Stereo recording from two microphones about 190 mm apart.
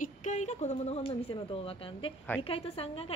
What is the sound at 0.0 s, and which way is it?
A woman's voice, 40° left (ahead or behind).